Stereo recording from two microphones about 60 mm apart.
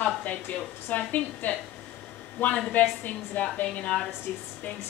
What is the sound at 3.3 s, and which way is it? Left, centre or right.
Speech, left.